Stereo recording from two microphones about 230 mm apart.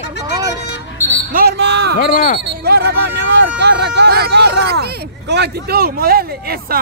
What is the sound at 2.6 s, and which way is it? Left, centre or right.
Speech, right.